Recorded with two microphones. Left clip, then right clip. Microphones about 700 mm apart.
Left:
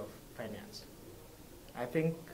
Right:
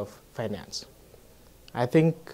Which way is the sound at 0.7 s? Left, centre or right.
Right.